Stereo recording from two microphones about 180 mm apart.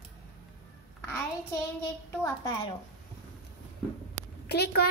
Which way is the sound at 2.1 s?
15° left (ahead or behind).